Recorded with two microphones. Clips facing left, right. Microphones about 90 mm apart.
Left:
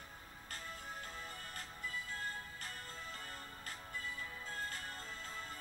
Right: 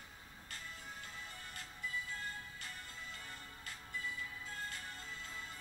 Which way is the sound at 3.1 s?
40° left (ahead or behind).